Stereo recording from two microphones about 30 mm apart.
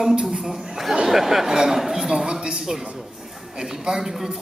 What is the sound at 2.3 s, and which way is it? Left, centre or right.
Speech, right.